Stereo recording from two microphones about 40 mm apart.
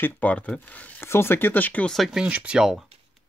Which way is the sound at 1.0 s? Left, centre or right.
Left.